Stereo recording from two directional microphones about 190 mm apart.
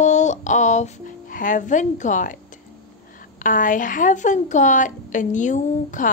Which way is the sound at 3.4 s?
45° left (ahead or behind).